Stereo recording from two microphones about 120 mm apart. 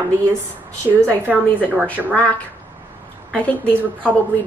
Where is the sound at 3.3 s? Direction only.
10° left (ahead or behind).